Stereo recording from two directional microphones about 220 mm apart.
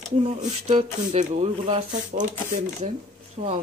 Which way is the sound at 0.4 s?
25° right (ahead or behind).